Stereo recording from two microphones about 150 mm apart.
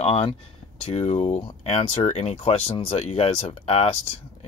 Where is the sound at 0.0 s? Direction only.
40° left (ahead or behind).